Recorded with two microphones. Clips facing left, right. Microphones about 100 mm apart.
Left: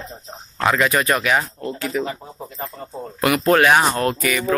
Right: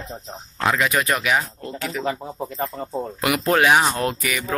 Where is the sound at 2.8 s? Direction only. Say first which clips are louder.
Left 1 dB; 10° right (ahead or behind).